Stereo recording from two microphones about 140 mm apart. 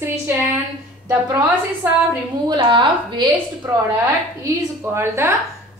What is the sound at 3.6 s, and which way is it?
Speech, 20° right (ahead or behind).